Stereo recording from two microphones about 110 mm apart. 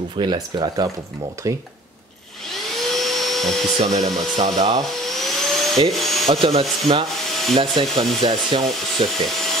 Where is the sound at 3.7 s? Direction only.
80° right.